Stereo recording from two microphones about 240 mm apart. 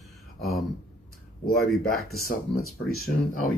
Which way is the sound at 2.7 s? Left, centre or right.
Left.